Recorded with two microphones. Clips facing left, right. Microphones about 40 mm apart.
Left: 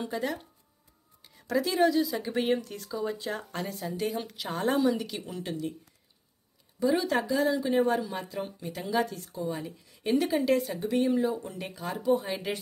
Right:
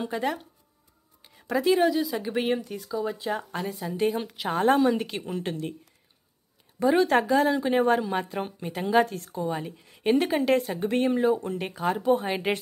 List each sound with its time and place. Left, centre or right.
1.2 s a sound: centre
1.7 s speech: centre
3.9 s a woman's voice: right
4.4 s speech: right
6.8 s speech: right
9.3 s speech: right